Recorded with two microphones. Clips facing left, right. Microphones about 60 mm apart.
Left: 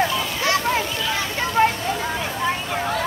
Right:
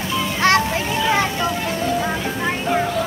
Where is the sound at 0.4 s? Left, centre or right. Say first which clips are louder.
Right 6 dB; right.